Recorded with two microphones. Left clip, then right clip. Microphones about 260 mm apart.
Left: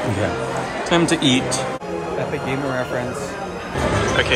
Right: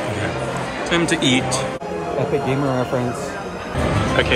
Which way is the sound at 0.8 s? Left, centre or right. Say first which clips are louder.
Left 1 dB; centre.